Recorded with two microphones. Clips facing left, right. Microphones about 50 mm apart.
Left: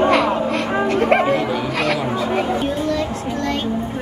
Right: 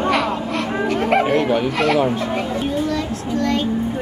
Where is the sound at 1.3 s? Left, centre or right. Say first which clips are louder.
Right 2 dB; right.